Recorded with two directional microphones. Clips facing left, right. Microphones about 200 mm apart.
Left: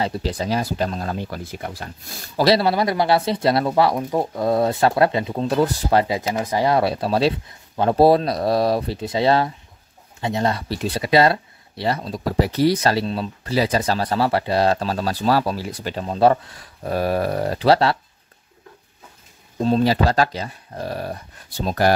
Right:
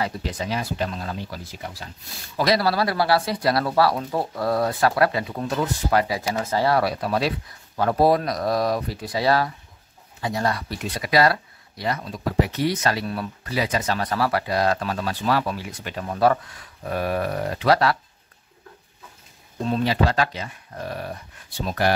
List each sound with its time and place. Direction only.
0.0 s speech: 35° left (ahead or behind); by 1.9 s 55° left (ahead or behind)
2.3 s speech: 30° left (ahead or behind)
6.3 s speech: 15° left (ahead or behind)
19.6 s speech: 35° left (ahead or behind)